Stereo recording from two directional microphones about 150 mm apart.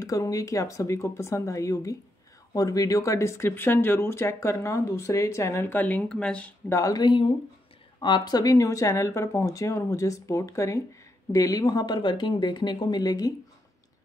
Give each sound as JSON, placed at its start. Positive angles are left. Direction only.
{"t": 0.0, "sound": "speech", "side_deg": 20}
{"t": 6.7, "sound": "speech", "side_deg": 25}